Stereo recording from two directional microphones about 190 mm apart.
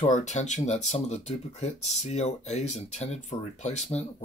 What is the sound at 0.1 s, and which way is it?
Speech, 40° left (ahead or behind).